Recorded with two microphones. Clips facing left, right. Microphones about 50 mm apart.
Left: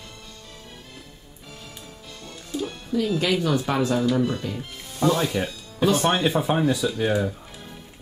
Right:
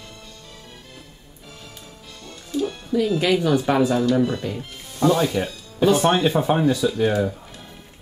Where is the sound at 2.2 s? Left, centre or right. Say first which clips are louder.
Right 5 dB; centre.